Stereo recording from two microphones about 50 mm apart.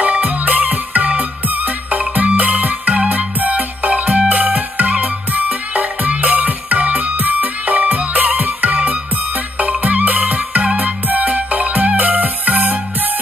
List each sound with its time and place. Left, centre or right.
0.0 s music: right